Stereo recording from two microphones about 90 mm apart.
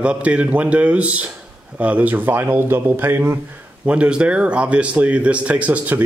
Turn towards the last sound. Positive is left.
turn(degrees=-20)  # may be behind; listen again after turning